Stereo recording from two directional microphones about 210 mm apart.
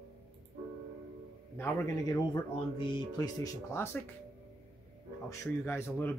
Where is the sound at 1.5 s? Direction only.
10° left (ahead or behind).